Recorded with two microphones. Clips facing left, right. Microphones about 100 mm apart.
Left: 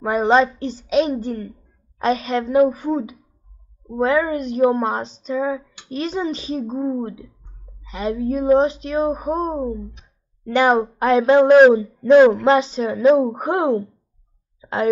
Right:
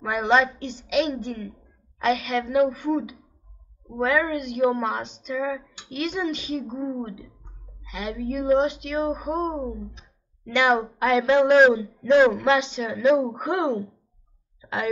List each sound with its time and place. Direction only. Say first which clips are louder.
0.0 s a woman's voice: left 5 dB; 35° left (ahead or behind)